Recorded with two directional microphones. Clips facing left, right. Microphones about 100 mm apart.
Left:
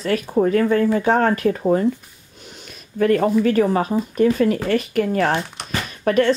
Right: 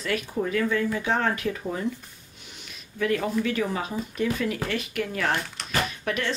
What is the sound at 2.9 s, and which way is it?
Speech, 45° left (ahead or behind).